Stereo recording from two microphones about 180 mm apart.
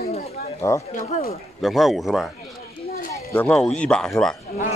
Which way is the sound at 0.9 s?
40° left (ahead or behind).